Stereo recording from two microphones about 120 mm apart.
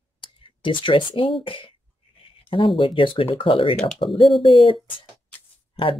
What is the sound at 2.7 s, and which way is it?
Speech, 45° left (ahead or behind).